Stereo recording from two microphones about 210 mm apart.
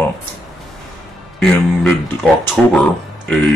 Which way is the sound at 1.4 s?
5° left (ahead or behind).